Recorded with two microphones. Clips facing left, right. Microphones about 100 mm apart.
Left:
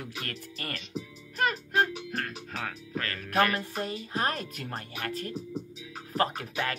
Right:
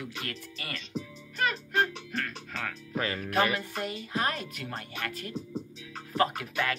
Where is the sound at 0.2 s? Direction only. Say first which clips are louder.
Left 1 dB; 40° left (ahead or behind).